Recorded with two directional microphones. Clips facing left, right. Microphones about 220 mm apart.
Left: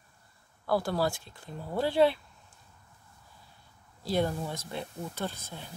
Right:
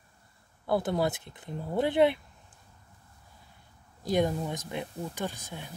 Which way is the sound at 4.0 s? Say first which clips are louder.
Right 2 dB; 15° right (ahead or behind).